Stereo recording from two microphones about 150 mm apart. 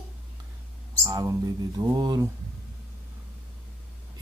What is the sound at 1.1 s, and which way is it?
Speech, 25° right (ahead or behind).